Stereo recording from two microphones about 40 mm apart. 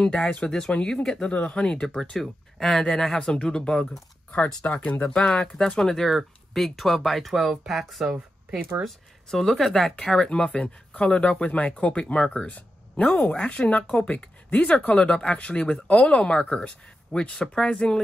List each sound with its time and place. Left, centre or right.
0.0 s speech: centre
1.3 s speech: left
4.6 s speech: left
5.8 s speech: centre
6.0 s speech: centre
8.8 s speech: centre
10.3 s speech: left
12.4 s speech: left
13.4 s speech: left